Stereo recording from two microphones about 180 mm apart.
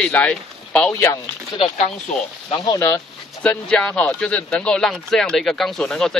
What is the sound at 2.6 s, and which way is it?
Speech, 20° left (ahead or behind).